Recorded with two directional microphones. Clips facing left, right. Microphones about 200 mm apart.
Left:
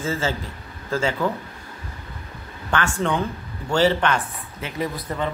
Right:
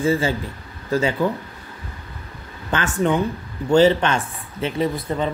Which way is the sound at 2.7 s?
20° right (ahead or behind).